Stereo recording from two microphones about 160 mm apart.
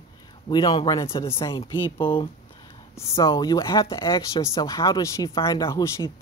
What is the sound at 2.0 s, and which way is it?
Speech, 35° left (ahead or behind).